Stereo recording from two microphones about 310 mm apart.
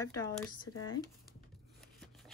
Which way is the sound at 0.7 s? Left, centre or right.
Left.